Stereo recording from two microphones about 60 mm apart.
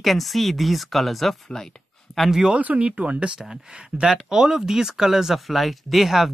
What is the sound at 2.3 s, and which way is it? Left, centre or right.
Speech, centre.